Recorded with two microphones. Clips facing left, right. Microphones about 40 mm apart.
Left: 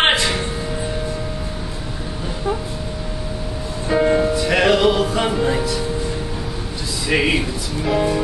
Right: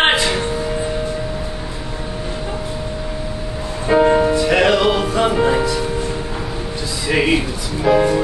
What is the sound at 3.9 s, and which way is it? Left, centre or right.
Music, centre.